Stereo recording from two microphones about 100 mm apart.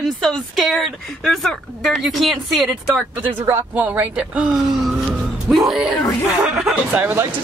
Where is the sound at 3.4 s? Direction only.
20° right (ahead or behind).